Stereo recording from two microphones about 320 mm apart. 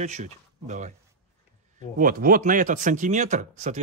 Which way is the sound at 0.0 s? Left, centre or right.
Right.